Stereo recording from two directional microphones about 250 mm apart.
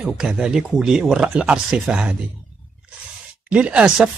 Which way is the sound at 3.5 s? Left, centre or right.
Centre.